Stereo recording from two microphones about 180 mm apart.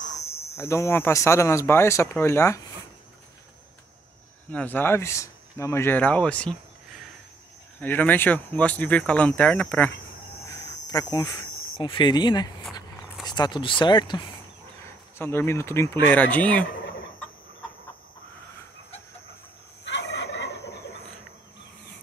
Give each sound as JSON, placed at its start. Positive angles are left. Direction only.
{"t": 0.6, "sound": "speech", "side_deg": 15}
{"t": 4.5, "sound": "speech", "side_deg": 10}
{"t": 7.8, "sound": "speech", "side_deg": 10}
{"t": 10.5, "sound": "insect", "side_deg": 20}
{"t": 12.7, "sound": "a sound", "side_deg": 25}
{"t": 15.1, "sound": "speech", "side_deg": 15}
{"t": 19.8, "sound": "gobble", "side_deg": 80}